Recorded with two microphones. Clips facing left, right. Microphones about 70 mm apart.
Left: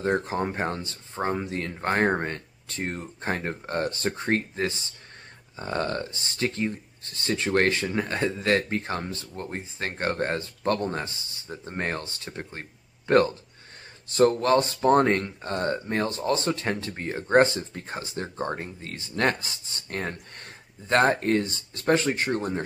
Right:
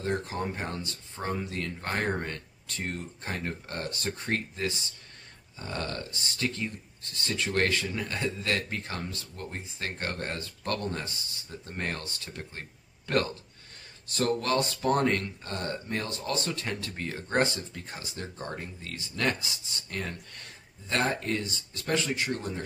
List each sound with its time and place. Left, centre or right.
0.0 s speech: left